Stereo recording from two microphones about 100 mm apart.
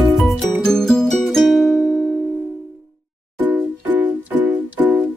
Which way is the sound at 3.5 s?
15° right (ahead or behind).